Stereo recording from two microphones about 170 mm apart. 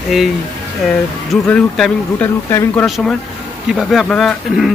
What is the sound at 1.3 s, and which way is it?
A man's voice, 5° left (ahead or behind).